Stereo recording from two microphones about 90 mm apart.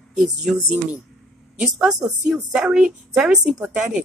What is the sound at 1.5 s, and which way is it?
A woman's voice, 10° right (ahead or behind).